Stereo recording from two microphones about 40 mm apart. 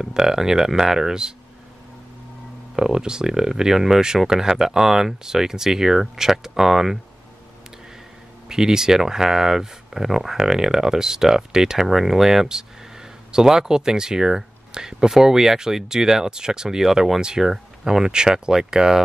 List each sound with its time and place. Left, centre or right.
0.0 s speech: centre
2.7 s speech: centre
8.5 s speech: centre